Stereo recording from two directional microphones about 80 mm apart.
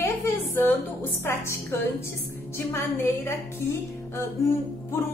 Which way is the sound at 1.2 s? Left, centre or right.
Left.